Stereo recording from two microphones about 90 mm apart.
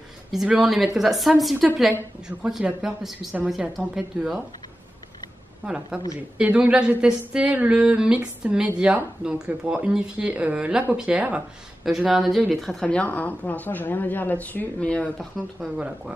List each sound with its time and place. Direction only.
0.3 s speech: 5° right (ahead or behind)
6.3 s a sound: 15° right (ahead or behind)
11.8 s speech: 5° right (ahead or behind)
12.8 s a woman's voice: 15° left (ahead or behind)